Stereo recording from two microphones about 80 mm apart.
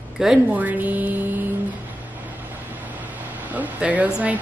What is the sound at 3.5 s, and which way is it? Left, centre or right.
Speech, centre.